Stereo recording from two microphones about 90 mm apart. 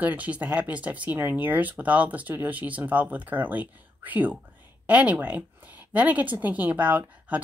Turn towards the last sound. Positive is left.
turn(degrees=-20)  # may be behind; listen again after turning